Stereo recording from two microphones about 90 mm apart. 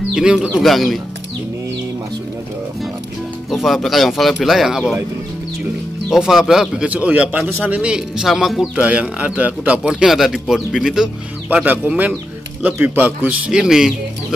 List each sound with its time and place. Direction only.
0.1 s speech: 10° right (ahead or behind)
0.6 s speech: centre (ahead or behind)
3.4 s speech: centre (ahead or behind)
6.0 s speech: 5° right (ahead or behind)
8.7 s speech: 15° right (ahead or behind)
11.5 s speech: 20° right (ahead or behind)
13.5 s speech: 5° right (ahead or behind)